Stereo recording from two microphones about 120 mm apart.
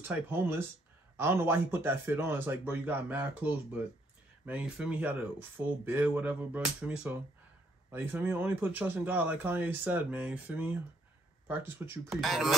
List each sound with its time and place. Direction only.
0.1 s speech: 15° right (ahead or behind)
4.5 s speech: 10° right (ahead or behind)
12.1 s speech: centre (ahead or behind)